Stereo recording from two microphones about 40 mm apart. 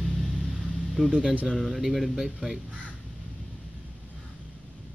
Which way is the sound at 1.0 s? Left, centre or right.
Centre.